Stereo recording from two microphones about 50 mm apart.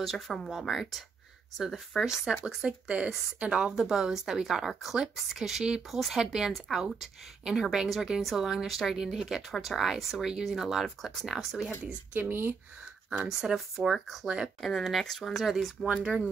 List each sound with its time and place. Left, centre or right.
0.0 s speech: centre
2.9 s speech: right
3.7 s a woman's voice: centre
11.8 s a woman's voice: right
13.2 s a woman's voice: centre
13.5 s speech: centre
14.2 s a woman's voice: centre
14.6 s speech: centre
15.4 s a woman's voice: centre